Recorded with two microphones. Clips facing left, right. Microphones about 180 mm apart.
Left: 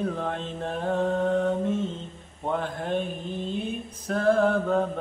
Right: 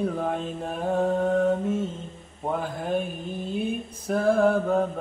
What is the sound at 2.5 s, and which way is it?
Mantra, 10° right (ahead or behind).